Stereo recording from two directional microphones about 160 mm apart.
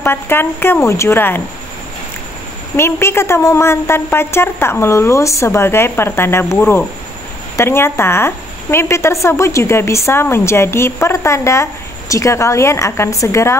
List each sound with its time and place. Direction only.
0.0 s a woman's voice: 15° left (ahead or behind)
2.7 s a woman's voice: 15° left (ahead or behind)